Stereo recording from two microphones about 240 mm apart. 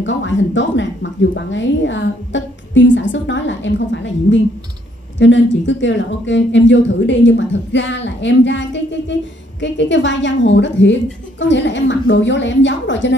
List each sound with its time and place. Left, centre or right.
0.0 s speech: left